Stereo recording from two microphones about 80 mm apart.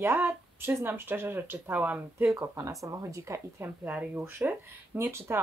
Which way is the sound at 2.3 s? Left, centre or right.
Right.